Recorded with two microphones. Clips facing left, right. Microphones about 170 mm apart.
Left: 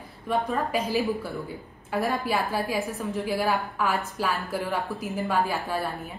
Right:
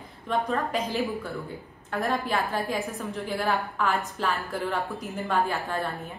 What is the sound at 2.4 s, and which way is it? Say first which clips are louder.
A woman's voice: left 1 dB; 5° left (ahead or behind).